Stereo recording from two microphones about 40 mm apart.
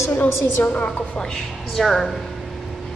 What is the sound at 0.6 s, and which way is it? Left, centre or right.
Speech, left.